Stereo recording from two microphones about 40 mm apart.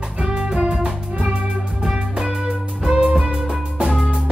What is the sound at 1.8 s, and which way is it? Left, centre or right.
Music, centre.